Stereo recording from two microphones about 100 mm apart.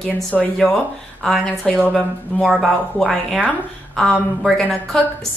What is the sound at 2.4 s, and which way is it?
A woman's voice, 5° right (ahead or behind).